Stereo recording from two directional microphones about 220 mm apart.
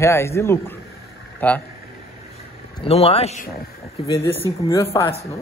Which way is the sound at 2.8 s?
25° left (ahead or behind).